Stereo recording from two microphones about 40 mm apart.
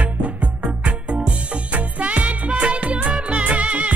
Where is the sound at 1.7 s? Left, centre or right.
Right.